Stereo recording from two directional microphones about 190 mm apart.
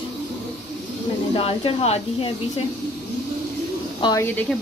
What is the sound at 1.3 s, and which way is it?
Speech, 30° left (ahead or behind).